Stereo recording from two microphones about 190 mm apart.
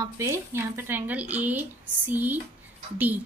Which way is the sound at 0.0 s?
15° right (ahead or behind).